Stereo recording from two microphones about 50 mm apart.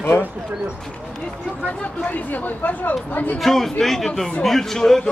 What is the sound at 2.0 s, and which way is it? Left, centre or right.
Speech, left.